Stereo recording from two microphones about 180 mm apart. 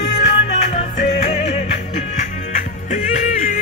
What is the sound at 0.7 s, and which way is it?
Music, 40° left (ahead or behind).